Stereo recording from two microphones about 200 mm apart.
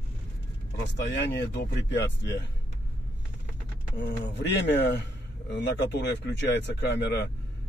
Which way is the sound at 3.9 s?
60° left (ahead or behind).